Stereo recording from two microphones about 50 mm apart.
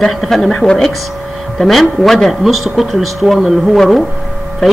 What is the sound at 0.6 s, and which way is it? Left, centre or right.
Speech, centre.